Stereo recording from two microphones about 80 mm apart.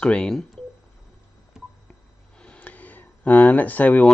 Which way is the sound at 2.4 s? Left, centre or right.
Centre.